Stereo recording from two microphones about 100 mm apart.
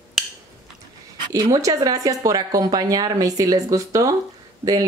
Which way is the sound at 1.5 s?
35° right (ahead or behind).